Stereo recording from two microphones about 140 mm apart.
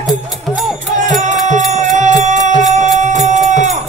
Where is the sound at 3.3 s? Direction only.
60° right (ahead or behind).